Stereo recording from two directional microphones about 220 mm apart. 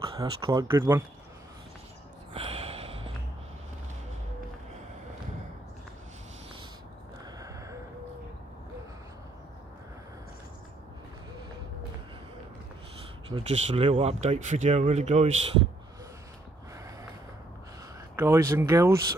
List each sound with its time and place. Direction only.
0.0 s speech: 25° right (ahead or behind)
2.3 s gasp: 25° right (ahead or behind)
7.3 s a sound: 15° right (ahead or behind)
13.3 s speech: 25° right (ahead or behind)
18.1 s speech: 15° right (ahead or behind)